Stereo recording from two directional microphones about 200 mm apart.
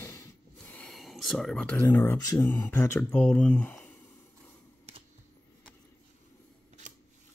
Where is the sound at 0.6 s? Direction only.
5° left (ahead or behind).